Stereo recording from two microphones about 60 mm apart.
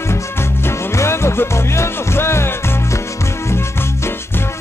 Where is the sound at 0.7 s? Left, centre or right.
Left.